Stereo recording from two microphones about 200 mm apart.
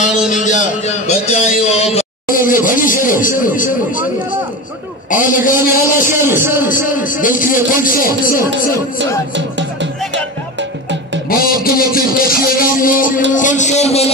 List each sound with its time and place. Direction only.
0.3 s a man's voice: 40° left (ahead or behind)
2.0 s speech: 45° left (ahead or behind)
5.1 s speech: 40° left (ahead or behind)
6.2 s a man's voice: 10° right (ahead or behind)
6.9 s speech: 40° left (ahead or behind)
9.6 s music: 65° right (ahead or behind)
11.2 s a man's voice: 45° left (ahead or behind)